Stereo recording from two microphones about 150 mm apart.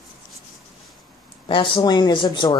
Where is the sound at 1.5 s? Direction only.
35° left (ahead or behind).